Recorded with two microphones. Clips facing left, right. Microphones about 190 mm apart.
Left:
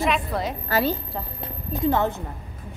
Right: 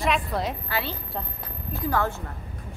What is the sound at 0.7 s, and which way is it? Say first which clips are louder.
Speech: left 8 dB; 40° left (ahead or behind).